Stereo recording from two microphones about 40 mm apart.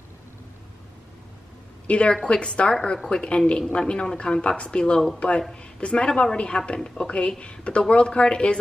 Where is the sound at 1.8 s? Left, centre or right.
Left.